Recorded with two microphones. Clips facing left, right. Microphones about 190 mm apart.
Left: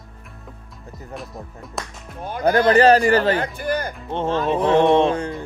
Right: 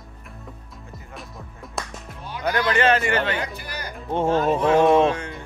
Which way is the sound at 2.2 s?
50° left (ahead or behind).